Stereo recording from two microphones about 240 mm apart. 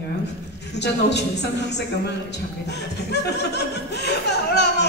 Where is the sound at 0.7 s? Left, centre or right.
Left.